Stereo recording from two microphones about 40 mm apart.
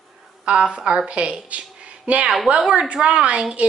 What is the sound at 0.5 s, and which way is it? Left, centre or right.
A woman's voice, right.